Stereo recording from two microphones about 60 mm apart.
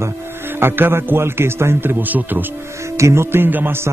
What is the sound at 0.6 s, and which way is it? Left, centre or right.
Speech, right.